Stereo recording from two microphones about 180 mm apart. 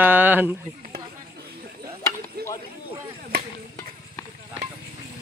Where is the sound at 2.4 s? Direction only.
60° right (ahead or behind).